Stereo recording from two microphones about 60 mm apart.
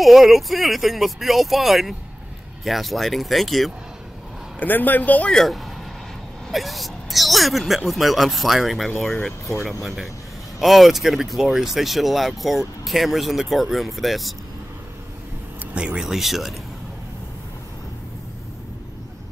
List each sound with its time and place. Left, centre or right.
0.0 s speech: centre
4.6 s a man's voice: left
5.3 s speech: centre
15.6 s speech: centre
16.1 s speech: centre